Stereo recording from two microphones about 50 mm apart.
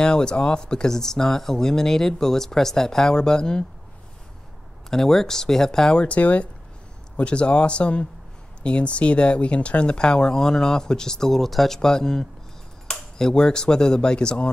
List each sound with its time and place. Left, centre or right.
0.0 s speech: centre
4.8 s speech: centre
6.0 s speech: left